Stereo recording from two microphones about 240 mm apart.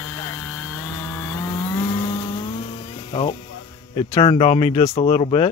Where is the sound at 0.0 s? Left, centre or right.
Centre.